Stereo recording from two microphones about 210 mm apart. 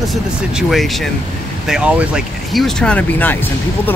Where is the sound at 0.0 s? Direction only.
Centre (ahead or behind).